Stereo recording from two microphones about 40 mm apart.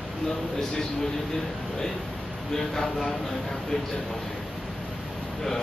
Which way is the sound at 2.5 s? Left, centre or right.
Centre.